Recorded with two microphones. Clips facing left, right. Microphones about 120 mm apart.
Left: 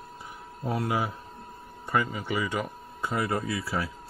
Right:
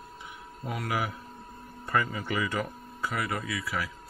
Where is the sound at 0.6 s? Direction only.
30° left (ahead or behind).